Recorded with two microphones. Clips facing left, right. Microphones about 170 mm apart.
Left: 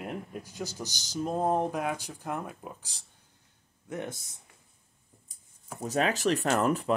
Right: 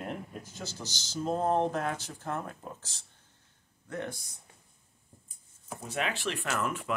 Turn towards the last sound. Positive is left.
turn(degrees=35)  # may be behind; listen again after turning